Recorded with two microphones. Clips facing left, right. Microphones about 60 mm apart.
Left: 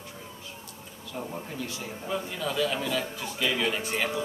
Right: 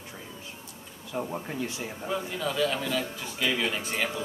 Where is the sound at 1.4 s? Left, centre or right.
Right.